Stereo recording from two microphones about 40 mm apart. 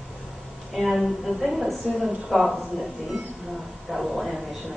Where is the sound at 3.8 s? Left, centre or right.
Centre.